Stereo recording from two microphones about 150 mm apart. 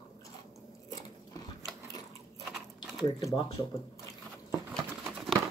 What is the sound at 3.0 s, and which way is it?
Speech, 30° left (ahead or behind).